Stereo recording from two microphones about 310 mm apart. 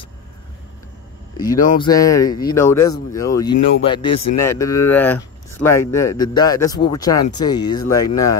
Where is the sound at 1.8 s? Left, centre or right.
Centre.